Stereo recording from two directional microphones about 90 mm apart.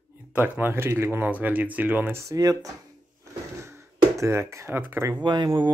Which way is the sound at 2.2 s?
35° right (ahead or behind).